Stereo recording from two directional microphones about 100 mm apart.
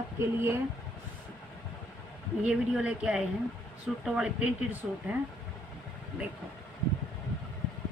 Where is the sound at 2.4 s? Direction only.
10° right (ahead or behind).